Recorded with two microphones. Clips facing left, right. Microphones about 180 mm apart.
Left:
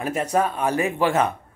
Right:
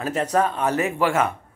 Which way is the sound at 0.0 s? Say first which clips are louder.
Right 1 dB; 10° left (ahead or behind).